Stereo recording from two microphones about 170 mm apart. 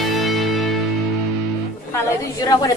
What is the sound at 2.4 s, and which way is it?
Speech, 25° left (ahead or behind).